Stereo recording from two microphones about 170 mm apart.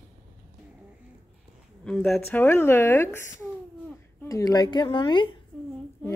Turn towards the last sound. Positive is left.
turn(degrees=10)  # may be behind; listen again after turning